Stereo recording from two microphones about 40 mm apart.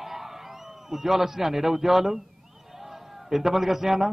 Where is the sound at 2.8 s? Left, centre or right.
Centre.